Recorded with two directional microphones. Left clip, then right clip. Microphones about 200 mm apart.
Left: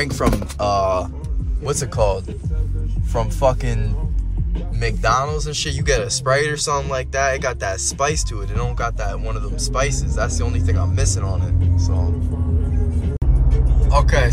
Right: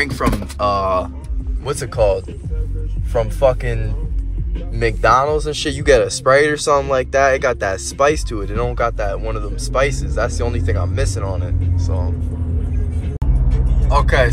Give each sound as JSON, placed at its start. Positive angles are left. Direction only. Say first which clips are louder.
{"t": 0.0, "sound": "speech", "louder": "right 1 dB", "side_deg": 20}
{"t": 13.8, "sound": "speech", "louder": "right 3 dB", "side_deg": 10}